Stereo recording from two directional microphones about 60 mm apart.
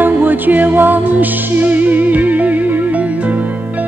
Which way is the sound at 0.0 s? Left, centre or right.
Right.